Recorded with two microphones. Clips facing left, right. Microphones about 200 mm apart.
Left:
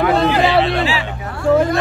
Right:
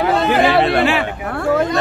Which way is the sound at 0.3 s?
55° right (ahead or behind).